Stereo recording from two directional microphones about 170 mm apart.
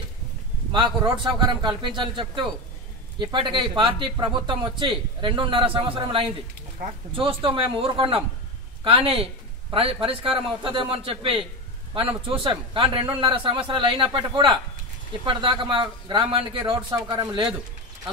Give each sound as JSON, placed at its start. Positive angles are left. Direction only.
{"t": 1.1, "sound": "a man's voice", "side_deg": -25}